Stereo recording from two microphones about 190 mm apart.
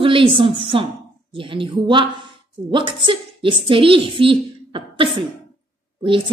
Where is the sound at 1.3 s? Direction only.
25° right (ahead or behind).